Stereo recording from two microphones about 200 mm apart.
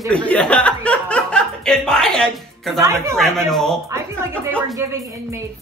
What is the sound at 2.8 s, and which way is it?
Speech, 15° right (ahead or behind).